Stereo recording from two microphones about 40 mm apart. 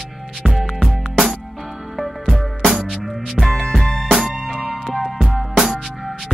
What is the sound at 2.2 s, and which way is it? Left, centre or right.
Music, centre.